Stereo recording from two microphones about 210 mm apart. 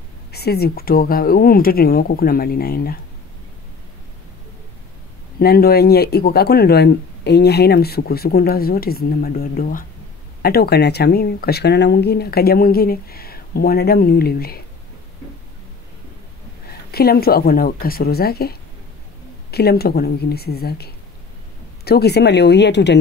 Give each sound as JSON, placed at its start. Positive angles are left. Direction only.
{"t": 0.3, "sound": "speech", "side_deg": 50}
{"t": 5.4, "sound": "speech", "side_deg": 45}
{"t": 16.9, "sound": "speech", "side_deg": 45}